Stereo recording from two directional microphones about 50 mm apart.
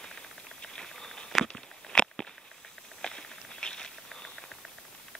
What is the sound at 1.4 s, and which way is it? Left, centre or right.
Walk, centre.